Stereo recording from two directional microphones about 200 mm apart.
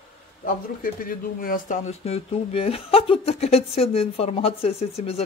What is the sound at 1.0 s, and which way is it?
Speech, 45° left (ahead or behind).